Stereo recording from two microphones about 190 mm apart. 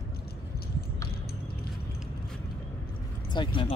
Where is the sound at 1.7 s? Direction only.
Centre (ahead or behind).